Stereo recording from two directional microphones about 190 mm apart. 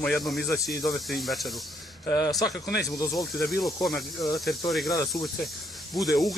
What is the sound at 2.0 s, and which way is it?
Speech, 20° left (ahead or behind).